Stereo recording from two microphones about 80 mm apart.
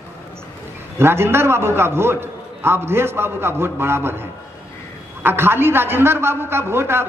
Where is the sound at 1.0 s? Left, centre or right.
Right.